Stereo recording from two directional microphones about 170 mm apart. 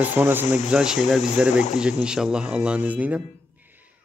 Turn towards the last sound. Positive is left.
turn(degrees=-10)  # may be behind; listen again after turning